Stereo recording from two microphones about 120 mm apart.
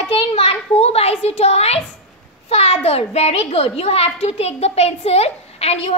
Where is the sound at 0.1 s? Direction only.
55° left (ahead or behind).